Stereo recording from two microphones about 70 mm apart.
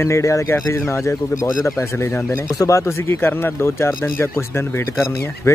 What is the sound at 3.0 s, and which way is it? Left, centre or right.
Speech, left.